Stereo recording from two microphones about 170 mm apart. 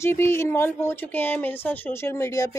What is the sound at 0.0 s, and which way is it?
Speech, 15° left (ahead or behind).